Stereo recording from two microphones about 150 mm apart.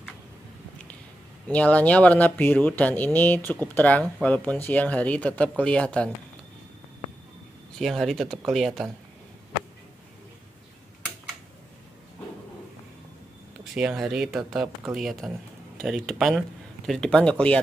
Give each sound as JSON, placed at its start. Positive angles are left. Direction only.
{"t": 1.5, "sound": "speech", "side_deg": 10}
{"t": 7.8, "sound": "speech", "side_deg": 0}
{"t": 13.7, "sound": "speech", "side_deg": -5}